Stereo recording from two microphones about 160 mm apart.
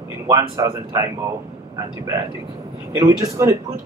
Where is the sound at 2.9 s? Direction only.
20° right (ahead or behind).